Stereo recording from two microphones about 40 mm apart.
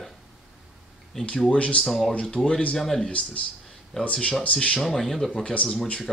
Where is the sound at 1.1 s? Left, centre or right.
Centre.